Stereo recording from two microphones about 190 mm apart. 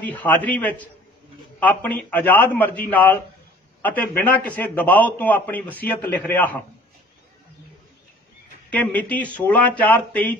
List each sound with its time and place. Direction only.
0.0 s a man's voice: 10° left (ahead or behind)
8.6 s a man's voice: 5° left (ahead or behind)